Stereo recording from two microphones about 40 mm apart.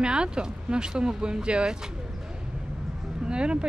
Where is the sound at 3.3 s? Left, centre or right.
Right.